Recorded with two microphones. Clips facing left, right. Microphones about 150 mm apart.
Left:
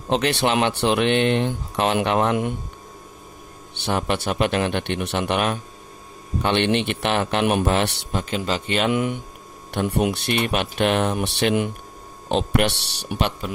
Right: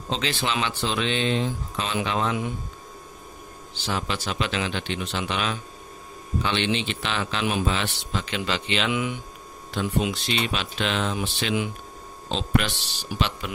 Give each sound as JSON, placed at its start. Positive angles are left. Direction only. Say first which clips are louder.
{"t": 0.1, "sound": "a man's voice", "louder": "left 7 dB", "side_deg": 65}
{"t": 3.8, "sound": "a man's voice", "louder": "left 6 dB", "side_deg": 60}